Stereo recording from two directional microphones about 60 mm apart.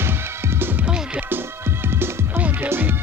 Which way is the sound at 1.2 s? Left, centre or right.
Right.